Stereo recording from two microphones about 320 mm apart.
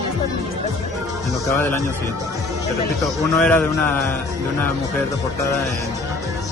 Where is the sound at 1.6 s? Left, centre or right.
Centre.